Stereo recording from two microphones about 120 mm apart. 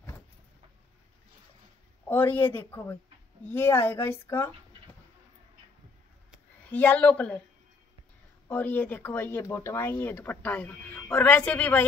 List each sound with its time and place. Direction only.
2.0 s speech: 15° left (ahead or behind)
6.7 s speech: 15° left (ahead or behind)
8.5 s speech: 15° left (ahead or behind)